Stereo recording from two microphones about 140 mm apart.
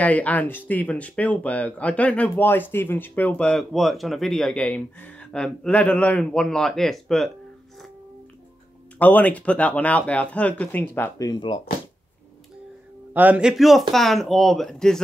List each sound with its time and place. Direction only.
0.0 s speech: 10° left (ahead or behind)
8.9 s speech: 10° left (ahead or behind)
11.1 s speech: 30° left (ahead or behind)
13.1 s speech: 10° right (ahead or behind)